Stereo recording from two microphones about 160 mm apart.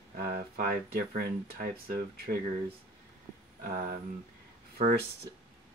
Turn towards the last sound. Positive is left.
turn(degrees=-45)  # may be behind; listen again after turning